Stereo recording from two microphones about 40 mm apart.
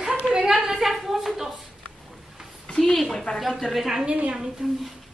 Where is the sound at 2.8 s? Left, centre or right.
Centre.